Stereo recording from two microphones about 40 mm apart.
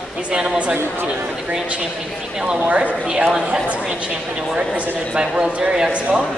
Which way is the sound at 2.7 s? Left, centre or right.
Right.